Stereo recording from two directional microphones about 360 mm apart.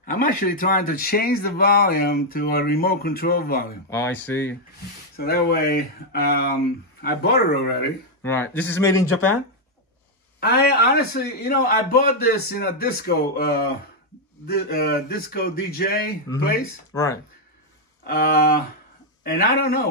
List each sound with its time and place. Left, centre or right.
0.0 s speech: left
3.9 s speech: centre
5.1 s speech: left
8.2 s speech: centre
9.0 s speech: left
10.4 s speech: left
16.9 s speech: centre
18.0 s speech: left